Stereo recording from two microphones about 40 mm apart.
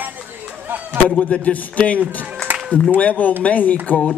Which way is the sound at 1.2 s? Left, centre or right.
Left.